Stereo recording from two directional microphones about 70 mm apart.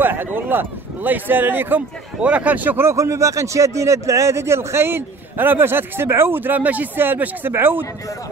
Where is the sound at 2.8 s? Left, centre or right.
Right.